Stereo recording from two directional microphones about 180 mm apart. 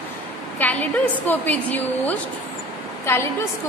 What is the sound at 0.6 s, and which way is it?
A woman's voice, 10° left (ahead or behind).